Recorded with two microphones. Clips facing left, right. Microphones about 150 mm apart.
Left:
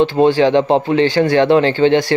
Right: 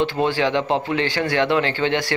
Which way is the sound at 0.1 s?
25° left (ahead or behind).